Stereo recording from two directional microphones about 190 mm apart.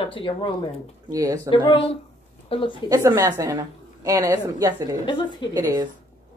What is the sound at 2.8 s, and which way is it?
A woman's voice, 20° right (ahead or behind).